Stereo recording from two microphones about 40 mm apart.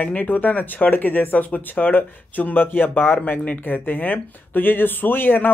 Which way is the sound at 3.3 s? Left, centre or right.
Left.